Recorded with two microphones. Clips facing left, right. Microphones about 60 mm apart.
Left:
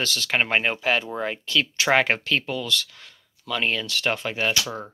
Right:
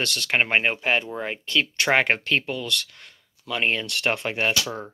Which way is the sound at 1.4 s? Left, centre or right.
Right.